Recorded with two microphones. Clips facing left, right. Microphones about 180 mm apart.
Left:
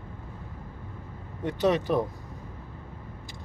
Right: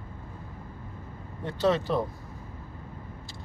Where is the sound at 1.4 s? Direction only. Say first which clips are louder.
Left 1 dB; 20° left (ahead or behind).